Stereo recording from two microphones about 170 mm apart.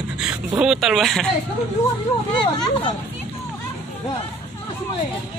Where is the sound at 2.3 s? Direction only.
30° left (ahead or behind).